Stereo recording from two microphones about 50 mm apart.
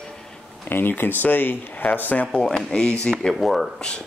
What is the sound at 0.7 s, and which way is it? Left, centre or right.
Speech, left.